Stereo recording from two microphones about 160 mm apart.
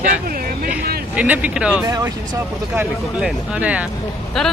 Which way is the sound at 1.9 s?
20° right (ahead or behind).